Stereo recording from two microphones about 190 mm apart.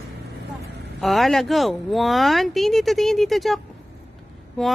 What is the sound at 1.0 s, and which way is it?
Speech, centre (ahead or behind).